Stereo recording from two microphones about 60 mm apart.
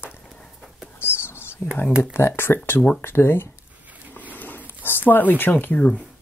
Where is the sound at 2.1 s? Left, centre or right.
Left.